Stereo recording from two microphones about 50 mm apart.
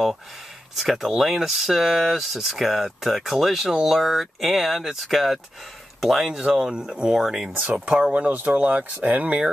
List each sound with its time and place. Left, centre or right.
0.7 s speech: centre
7.7 s speech: right